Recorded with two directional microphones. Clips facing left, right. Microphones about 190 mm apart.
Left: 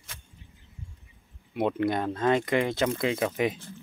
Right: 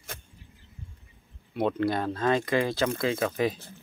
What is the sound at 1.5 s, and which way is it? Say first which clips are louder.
Speech: even; 20° left (ahead or behind).